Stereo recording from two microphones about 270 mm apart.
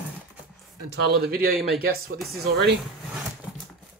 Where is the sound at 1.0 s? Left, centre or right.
Right.